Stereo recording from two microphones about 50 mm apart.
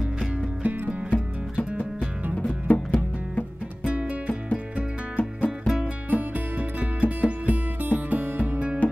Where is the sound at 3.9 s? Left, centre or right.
Right.